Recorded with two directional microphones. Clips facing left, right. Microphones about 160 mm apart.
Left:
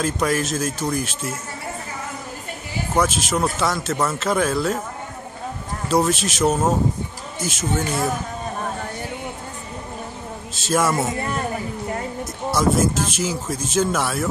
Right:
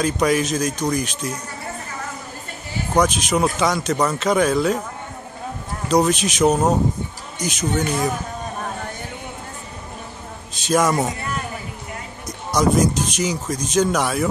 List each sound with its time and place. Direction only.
0.0 s speech: centre (ahead or behind)
2.9 s speech: 5° left (ahead or behind)
5.9 s speech: 5° left (ahead or behind)
10.5 s a sound: 5° left (ahead or behind)
10.9 s a man's voice: 15° right (ahead or behind)
12.5 s speech: 5° left (ahead or behind)